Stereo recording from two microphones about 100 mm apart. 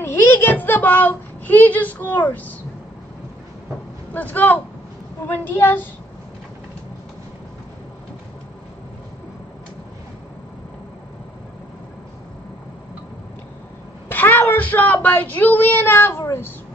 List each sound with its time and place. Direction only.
0.0 s speech: 25° left (ahead or behind)
4.1 s speech: 15° left (ahead or behind)
14.0 s a woman's voice: 20° left (ahead or behind)